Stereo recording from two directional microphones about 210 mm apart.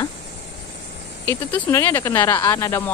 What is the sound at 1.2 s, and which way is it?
Speech, 10° left (ahead or behind).